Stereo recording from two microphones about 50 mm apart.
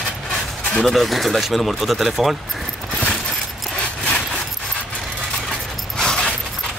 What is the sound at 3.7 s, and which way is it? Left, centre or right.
Sawing, left.